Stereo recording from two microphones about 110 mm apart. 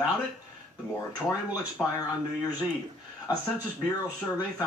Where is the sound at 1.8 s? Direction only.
15° left (ahead or behind).